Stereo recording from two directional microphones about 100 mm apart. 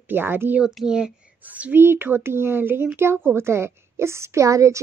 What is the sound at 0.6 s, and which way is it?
Speech, 5° right (ahead or behind).